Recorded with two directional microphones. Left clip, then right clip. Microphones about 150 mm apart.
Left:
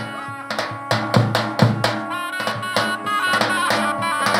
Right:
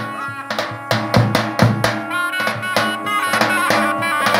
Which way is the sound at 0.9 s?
5° right (ahead or behind).